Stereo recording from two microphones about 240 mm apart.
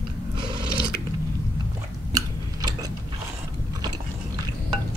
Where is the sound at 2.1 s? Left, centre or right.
Centre.